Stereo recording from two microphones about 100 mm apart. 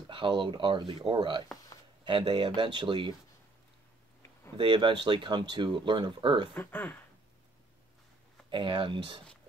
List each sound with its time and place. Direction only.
0.1 s speech: 55° right (ahead or behind)
4.6 s speech: 55° right (ahead or behind)
6.5 s speech: 20° left (ahead or behind)
8.5 s speech: 55° right (ahead or behind)